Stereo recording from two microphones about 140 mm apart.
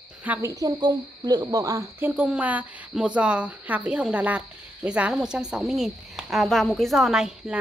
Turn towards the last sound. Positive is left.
turn(degrees=-5)  # may be behind; listen again after turning